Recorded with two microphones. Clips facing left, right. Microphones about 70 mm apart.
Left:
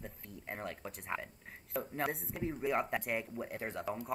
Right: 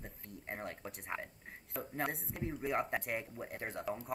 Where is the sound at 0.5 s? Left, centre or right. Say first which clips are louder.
Left 1 dB; centre.